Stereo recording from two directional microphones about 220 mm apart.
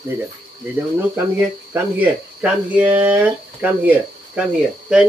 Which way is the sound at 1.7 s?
5° right (ahead or behind).